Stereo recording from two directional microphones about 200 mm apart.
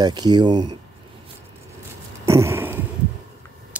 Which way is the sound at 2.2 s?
15° right (ahead or behind).